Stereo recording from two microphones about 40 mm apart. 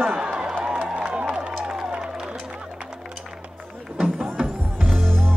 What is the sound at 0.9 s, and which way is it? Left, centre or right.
Crowd, right.